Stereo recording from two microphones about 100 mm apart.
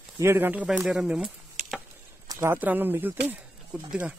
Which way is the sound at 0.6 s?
5° right (ahead or behind).